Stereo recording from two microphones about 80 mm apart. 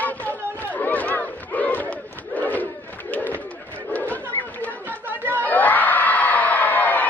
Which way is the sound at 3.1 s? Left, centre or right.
Left.